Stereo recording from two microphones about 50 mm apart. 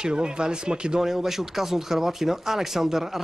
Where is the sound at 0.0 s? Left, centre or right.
Centre.